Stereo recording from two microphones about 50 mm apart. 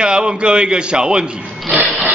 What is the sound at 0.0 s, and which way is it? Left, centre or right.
A man's voice, centre.